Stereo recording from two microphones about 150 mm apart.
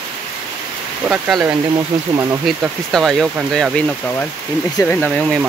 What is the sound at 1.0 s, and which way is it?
Speech, 5° right (ahead or behind).